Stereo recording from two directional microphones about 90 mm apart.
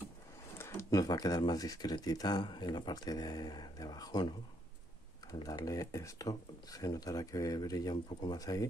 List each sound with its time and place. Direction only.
0.6 s a sound: 30° left (ahead or behind)
0.8 s speech: 45° left (ahead or behind)
5.3 s speech: 45° left (ahead or behind)